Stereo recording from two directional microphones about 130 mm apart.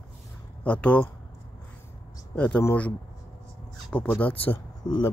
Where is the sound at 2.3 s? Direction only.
10° left (ahead or behind).